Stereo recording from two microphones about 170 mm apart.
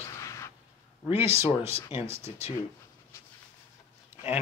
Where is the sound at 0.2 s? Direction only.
15° left (ahead or behind).